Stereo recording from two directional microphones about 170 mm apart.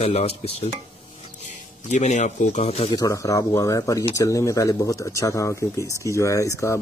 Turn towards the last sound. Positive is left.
turn(degrees=20)  # may be behind; listen again after turning